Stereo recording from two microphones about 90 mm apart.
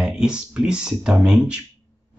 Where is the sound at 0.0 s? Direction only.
10° right (ahead or behind).